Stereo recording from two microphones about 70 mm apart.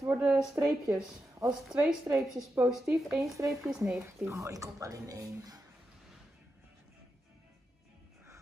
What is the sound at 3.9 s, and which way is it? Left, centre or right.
Speech, right.